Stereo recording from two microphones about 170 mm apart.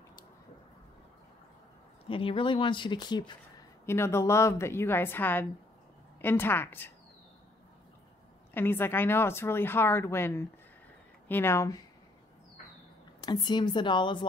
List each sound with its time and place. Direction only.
2.0 s speech: 30° left (ahead or behind)
3.8 s speech: 15° left (ahead or behind)
8.5 s speech: 10° left (ahead or behind)
13.2 s speech: 25° left (ahead or behind)